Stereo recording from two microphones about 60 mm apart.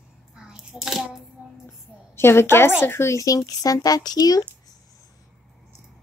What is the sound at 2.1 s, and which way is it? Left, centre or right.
A woman's voice, left.